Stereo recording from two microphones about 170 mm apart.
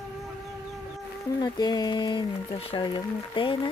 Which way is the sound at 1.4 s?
25° left (ahead or behind).